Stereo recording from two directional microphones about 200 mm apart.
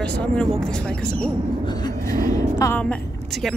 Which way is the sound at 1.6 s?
20° left (ahead or behind).